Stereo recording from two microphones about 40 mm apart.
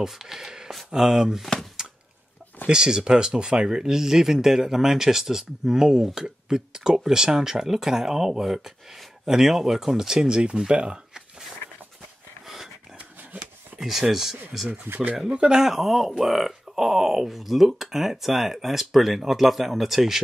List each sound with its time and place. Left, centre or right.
0.0 s speech: centre
1.8 s a sound: centre
2.6 s speech: centre
13.7 s speech: centre
14.9 s speech: right
15.5 s speech: centre